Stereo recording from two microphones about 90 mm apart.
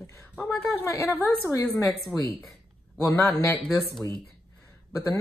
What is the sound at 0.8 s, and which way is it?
Speech, 35° left (ahead or behind).